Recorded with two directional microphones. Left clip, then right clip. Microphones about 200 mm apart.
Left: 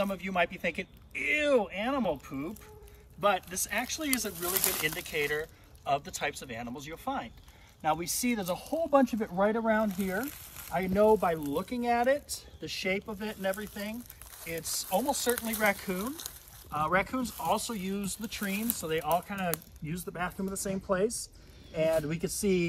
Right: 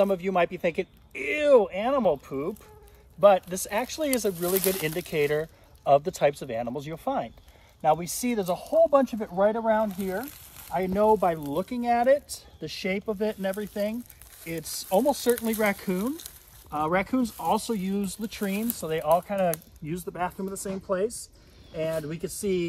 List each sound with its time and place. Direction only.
0.0 s speech: 35° right (ahead or behind); by 10.7 s 10° right (ahead or behind)
10.7 s speech: 30° right (ahead or behind)
11.4 s speech: 50° right (ahead or behind)
20.1 s speech: 25° right (ahead or behind)
20.4 s speech: 5° right (ahead or behind)